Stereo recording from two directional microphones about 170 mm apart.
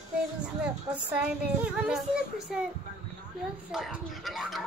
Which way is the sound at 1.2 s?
5° right (ahead or behind).